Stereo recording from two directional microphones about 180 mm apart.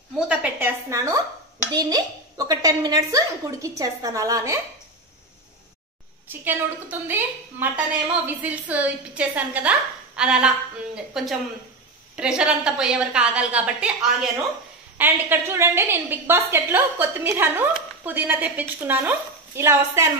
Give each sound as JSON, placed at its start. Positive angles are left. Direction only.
{"t": 0.3, "sound": "a woman's voice", "side_deg": -10}
{"t": 6.2, "sound": "a woman's voice", "side_deg": -10}
{"t": 15.0, "sound": "a woman's voice", "side_deg": -10}